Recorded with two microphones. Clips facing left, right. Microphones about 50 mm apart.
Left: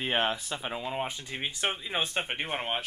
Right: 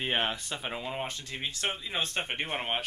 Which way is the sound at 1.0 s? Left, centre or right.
Centre.